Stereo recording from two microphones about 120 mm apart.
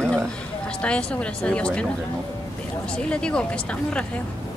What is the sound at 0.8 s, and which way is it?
A woman's voice, 10° left (ahead or behind).